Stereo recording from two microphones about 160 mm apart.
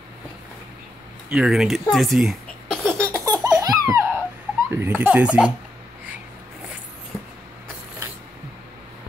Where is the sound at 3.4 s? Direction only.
20° right (ahead or behind).